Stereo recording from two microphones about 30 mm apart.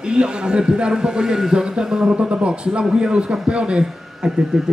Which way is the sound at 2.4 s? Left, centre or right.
Right.